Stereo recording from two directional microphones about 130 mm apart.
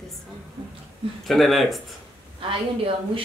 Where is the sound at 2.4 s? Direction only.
45° right (ahead or behind).